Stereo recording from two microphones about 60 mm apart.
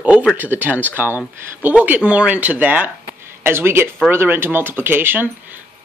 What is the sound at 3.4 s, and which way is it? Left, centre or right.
Speech, right.